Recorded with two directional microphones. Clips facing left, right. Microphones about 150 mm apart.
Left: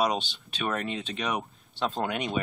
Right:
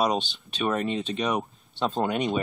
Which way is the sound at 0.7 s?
30° right (ahead or behind).